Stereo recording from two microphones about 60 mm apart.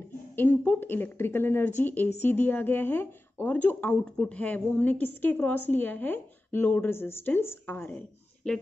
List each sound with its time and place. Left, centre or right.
0.4 s a woman's voice: left
3.6 s a woman's voice: left
8.5 s speech: centre